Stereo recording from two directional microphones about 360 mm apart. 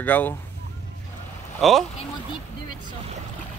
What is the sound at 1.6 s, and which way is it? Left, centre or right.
Speech, centre.